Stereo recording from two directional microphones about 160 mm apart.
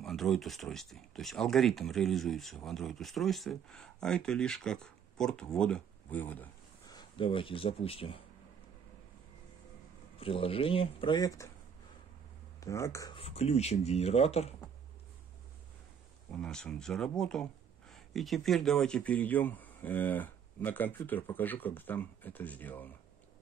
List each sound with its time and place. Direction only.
0.0 s speech: centre (ahead or behind)
6.9 s speech: 30° left (ahead or behind)
10.1 s speech: 35° left (ahead or behind)
12.5 s speech: 20° left (ahead or behind)
13.1 s speech: 40° left (ahead or behind)
16.3 s speech: 5° left (ahead or behind)